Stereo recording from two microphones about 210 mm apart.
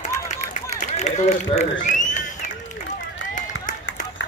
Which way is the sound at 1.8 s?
35° left (ahead or behind).